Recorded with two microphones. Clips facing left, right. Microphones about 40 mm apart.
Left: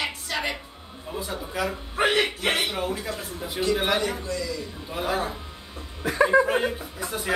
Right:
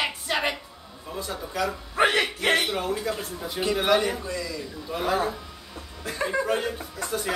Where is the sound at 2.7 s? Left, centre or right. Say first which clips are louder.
Right 1 dB; centre.